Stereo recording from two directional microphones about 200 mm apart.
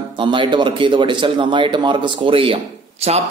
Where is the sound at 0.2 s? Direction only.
25° right (ahead or behind).